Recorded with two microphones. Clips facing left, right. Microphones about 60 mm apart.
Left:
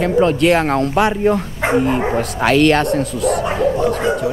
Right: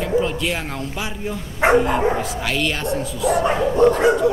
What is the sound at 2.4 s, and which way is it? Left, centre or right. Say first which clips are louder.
Speech: left 10 dB; left.